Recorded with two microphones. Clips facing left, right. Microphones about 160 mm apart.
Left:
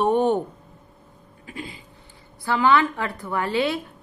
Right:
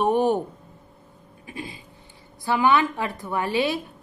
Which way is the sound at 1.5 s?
20° right (ahead or behind).